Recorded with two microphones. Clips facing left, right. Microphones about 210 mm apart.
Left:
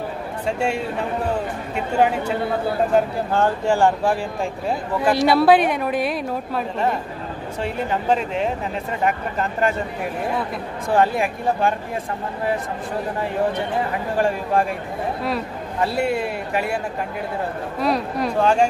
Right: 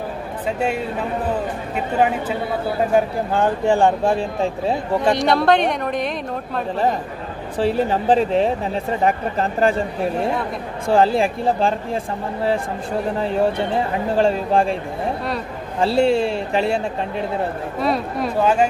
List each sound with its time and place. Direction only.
0.5 s a woman's voice: 5° right (ahead or behind)
2.9 s speech: 15° right (ahead or behind)
5.0 s a woman's voice: 5° left (ahead or behind)
7.5 s speech: 35° right (ahead or behind)
10.9 s speech: 30° right (ahead or behind)
14.1 s speech: 25° right (ahead or behind)
15.8 s speech: 30° right (ahead or behind)
17.7 s a woman's voice: centre (ahead or behind)